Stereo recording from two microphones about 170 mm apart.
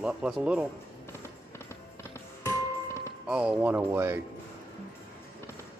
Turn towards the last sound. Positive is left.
turn(degrees=-15)  # may be behind; listen again after turning